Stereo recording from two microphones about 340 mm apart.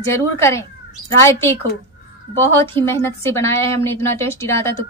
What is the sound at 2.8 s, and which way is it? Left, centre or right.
A woman's voice, centre.